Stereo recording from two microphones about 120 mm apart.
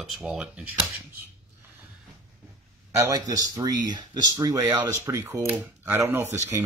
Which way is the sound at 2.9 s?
30° right (ahead or behind).